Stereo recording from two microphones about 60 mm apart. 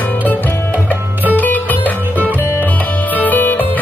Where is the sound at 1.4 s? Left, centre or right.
Left.